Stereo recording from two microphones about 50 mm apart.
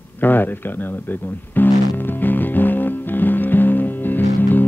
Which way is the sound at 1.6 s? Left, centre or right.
Left.